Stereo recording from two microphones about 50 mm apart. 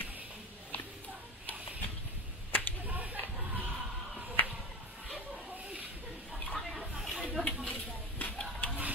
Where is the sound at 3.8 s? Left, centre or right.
Right.